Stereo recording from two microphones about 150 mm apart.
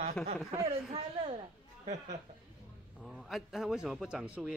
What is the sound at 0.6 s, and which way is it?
Speech, 40° right (ahead or behind).